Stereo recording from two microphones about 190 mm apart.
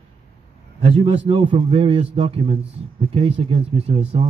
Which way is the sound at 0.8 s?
30° right (ahead or behind).